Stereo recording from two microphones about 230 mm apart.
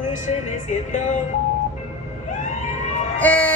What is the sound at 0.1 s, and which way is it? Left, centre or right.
Music, left.